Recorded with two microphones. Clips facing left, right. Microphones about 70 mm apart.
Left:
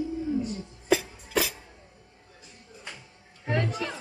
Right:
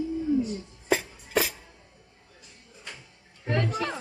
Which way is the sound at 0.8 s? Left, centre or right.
Right.